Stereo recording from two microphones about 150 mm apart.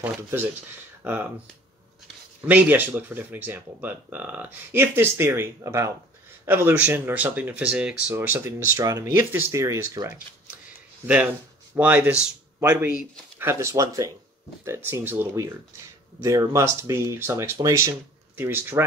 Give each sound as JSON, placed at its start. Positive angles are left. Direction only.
{"t": 0.0, "sound": "speech", "side_deg": -15}
{"t": 2.4, "sound": "speech", "side_deg": -10}
{"t": 11.7, "sound": "speech", "side_deg": -10}